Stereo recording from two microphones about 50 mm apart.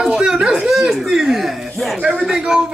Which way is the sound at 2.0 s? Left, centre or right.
Right.